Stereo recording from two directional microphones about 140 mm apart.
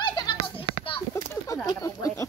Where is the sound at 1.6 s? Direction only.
25° left (ahead or behind).